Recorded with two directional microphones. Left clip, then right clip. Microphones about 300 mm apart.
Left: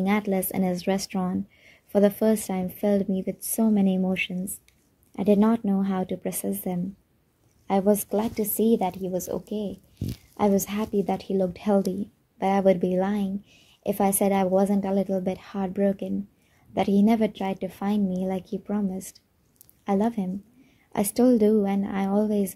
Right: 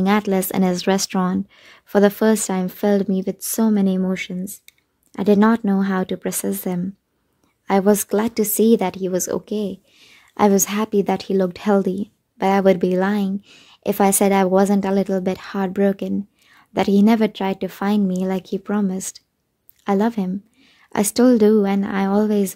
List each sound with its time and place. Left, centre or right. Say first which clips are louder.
0.0 s speech: right 7 dB; right